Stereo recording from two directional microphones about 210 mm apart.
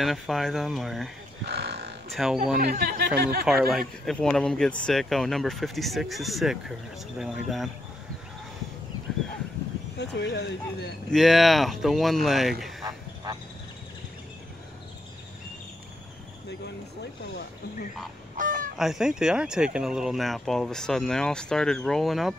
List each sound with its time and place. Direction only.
0.0 s speech: centre (ahead or behind)
1.5 s livestock: 50° right (ahead or behind)
2.0 s a sound: centre (ahead or behind)
2.6 s speech: 45° right (ahead or behind)
3.4 s speech: centre (ahead or behind)
9.9 s speech: 55° left (ahead or behind)
11.1 s speech: centre (ahead or behind)
12.8 s frog: 15° right (ahead or behind)
16.4 s speech: 55° left (ahead or behind)
18.4 s fowl: 40° right (ahead or behind)
18.8 s speech: centre (ahead or behind)